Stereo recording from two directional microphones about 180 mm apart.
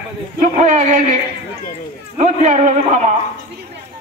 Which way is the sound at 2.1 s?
40° right (ahead or behind).